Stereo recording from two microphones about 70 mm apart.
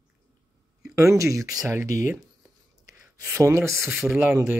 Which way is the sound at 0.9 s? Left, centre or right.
Right.